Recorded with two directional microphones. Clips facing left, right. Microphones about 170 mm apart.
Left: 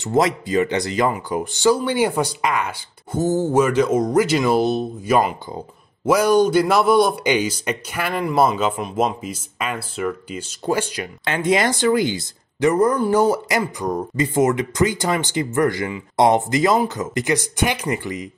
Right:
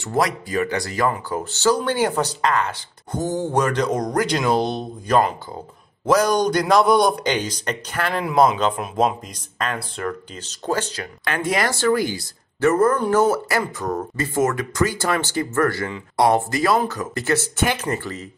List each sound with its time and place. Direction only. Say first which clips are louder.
0.0 s speech: left 3 dB; 20° left (ahead or behind)
11.2 s speech: left 3 dB; 20° left (ahead or behind)